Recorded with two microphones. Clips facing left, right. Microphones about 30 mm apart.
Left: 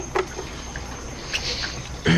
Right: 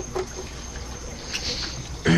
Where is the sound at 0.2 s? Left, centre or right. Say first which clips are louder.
Left 5 dB; left.